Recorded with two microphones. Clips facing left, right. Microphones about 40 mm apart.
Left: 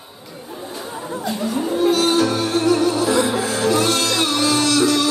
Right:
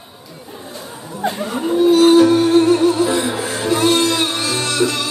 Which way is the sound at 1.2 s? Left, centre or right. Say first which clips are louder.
Right 3 dB; right.